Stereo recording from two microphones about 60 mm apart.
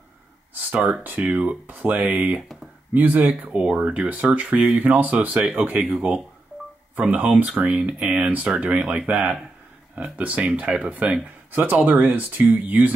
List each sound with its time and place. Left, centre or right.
0.7 s speech: right
3.4 s speech: centre